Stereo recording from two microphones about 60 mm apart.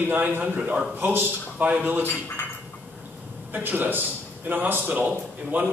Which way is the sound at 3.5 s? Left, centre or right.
Right.